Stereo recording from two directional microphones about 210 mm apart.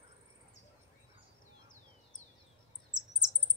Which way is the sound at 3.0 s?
20° right (ahead or behind).